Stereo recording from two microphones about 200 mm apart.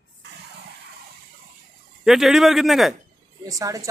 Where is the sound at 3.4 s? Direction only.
15° right (ahead or behind).